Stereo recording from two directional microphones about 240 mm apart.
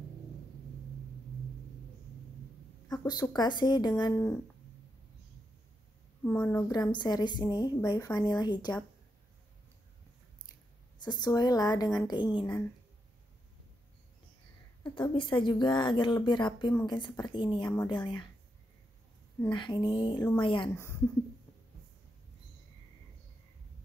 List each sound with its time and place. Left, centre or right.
2.9 s speech: centre
6.2 s speech: centre
11.0 s speech: centre
14.8 s speech: centre
19.4 s speech: centre